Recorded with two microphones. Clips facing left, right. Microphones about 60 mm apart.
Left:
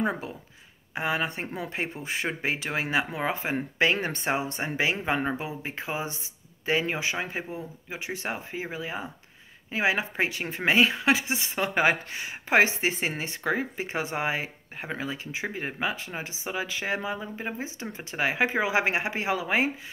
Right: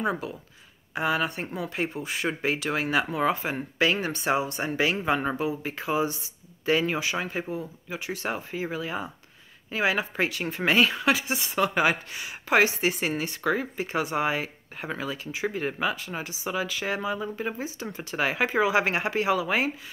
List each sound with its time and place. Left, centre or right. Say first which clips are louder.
0.0 s speech: even; left